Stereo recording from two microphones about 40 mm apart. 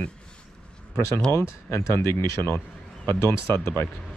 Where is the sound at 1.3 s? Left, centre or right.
Left.